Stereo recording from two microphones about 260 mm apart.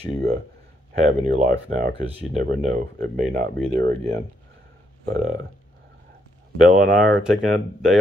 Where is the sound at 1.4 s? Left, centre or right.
Right.